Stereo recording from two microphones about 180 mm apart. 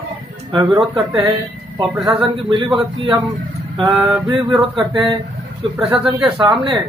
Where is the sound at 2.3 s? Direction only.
25° right (ahead or behind).